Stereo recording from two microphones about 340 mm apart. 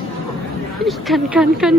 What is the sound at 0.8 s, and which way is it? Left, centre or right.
Speech, centre.